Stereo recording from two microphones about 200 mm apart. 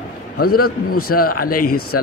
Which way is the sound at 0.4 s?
50° left (ahead or behind).